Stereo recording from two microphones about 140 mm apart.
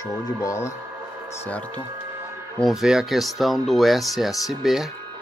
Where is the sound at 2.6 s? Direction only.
5° right (ahead or behind).